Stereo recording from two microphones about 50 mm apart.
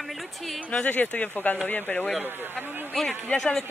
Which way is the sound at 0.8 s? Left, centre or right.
Left.